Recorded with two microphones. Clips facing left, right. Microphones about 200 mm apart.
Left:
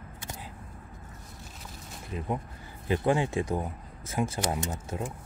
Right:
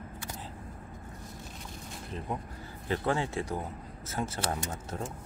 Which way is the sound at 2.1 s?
10° left (ahead or behind).